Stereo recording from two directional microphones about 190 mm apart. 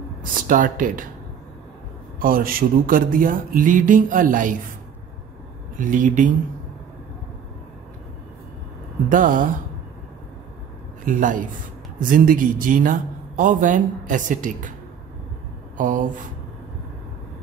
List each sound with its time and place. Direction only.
0.5 s a man's voice: 45° right (ahead or behind)
2.1 s a man's voice: 50° right (ahead or behind)
5.8 s a man's voice: 45° right (ahead or behind)
9.1 s a man's voice: 45° right (ahead or behind)
11.1 s a man's voice: 45° right (ahead or behind)
15.8 s a man's voice: 45° right (ahead or behind)